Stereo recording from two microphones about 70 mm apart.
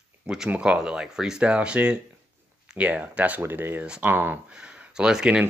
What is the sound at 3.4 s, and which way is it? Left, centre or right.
Speech, right.